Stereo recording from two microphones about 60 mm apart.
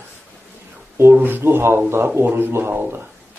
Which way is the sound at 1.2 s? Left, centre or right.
Right.